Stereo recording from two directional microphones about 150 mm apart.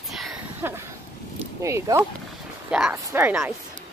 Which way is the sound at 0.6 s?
15° right (ahead or behind).